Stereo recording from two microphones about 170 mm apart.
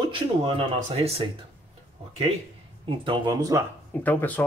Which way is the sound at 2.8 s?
30° right (ahead or behind).